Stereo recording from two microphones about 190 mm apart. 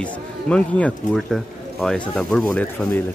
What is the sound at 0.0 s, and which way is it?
Speech, 5° left (ahead or behind).